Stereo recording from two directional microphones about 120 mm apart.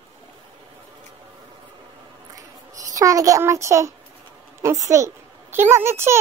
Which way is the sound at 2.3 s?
30° right (ahead or behind).